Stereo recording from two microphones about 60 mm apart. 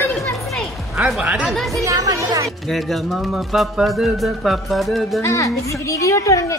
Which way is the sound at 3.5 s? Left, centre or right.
Centre.